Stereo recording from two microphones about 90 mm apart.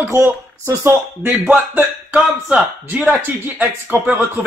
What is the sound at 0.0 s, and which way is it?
A man's voice, 30° right (ahead or behind).